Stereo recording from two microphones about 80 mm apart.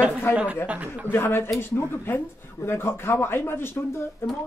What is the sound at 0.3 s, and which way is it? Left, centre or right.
Speech, left.